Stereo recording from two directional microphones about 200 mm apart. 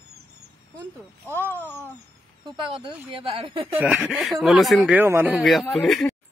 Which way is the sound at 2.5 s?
25° right (ahead or behind).